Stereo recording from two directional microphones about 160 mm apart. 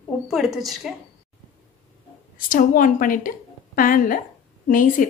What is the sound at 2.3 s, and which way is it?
A woman's voice, 60° left (ahead or behind).